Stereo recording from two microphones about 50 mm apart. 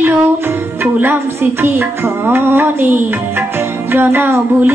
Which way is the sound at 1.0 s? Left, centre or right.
Right.